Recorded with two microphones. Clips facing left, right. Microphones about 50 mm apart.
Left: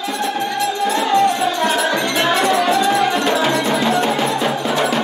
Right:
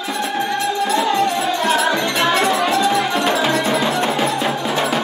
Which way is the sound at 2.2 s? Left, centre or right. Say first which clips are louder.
Left 1 dB; centre.